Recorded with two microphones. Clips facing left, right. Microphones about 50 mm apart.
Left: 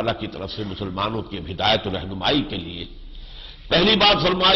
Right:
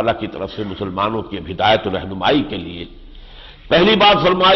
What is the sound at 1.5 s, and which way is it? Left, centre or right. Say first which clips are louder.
Speech: right 6 dB; right.